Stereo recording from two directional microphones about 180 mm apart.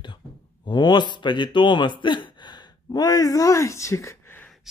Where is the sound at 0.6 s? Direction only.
25° left (ahead or behind).